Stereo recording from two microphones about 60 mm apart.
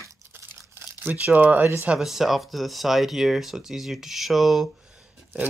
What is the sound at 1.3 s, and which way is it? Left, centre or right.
Speech, right.